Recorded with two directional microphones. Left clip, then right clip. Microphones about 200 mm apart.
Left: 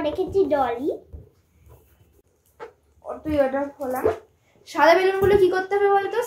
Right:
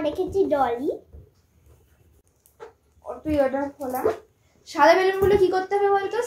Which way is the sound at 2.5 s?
10° left (ahead or behind).